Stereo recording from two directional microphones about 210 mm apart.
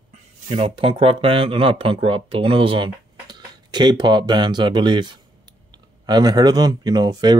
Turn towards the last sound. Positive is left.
turn(degrees=-20)  # may be behind; listen again after turning